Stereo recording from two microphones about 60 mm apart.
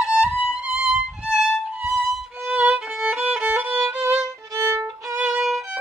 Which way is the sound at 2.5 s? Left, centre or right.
Centre.